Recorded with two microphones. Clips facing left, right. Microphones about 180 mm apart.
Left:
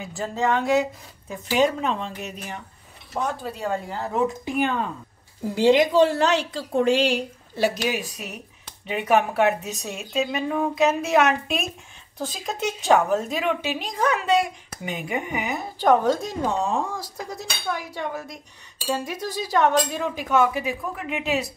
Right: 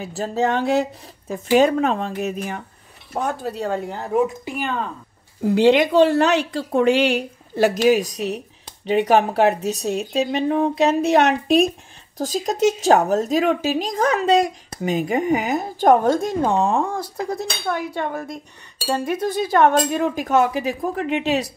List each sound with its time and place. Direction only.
0.0 s speech: 35° right (ahead or behind)
1.5 s speech: 50° right (ahead or behind)
5.5 s a woman's voice: 65° right (ahead or behind); by 21.4 s 35° right (ahead or behind)